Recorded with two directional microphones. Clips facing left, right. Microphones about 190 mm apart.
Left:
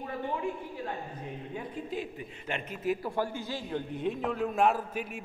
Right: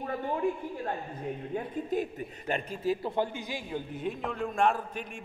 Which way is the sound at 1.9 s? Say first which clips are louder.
Right 5 dB; 45° right (ahead or behind).